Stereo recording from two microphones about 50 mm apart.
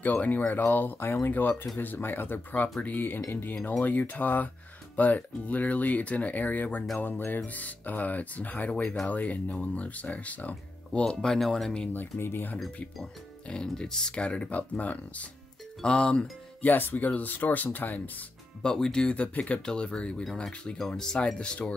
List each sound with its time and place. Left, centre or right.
0.0 s speech: left
0.5 s speech: left
3.2 s speech: left
3.8 s speech: left
7.2 s speech: left
7.4 s speech: left
11.1 s speech: centre
11.9 s speech: left
13.5 s speech: centre
15.8 s speech: centre
16.6 s speech: left
18.6 s speech: centre
20.7 s speech: centre